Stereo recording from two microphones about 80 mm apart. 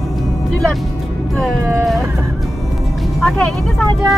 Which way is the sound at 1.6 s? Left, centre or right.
Centre.